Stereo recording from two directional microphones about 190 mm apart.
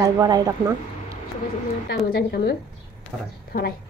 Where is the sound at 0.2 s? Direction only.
20° right (ahead or behind).